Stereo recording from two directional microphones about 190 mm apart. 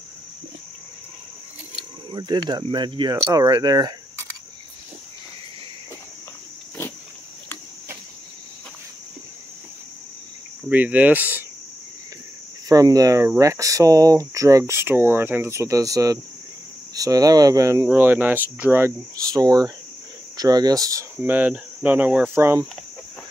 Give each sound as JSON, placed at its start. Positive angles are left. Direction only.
{"t": 2.0, "sound": "speech", "side_deg": -20}
{"t": 10.7, "sound": "speech", "side_deg": -10}
{"t": 12.6, "sound": "speech", "side_deg": -20}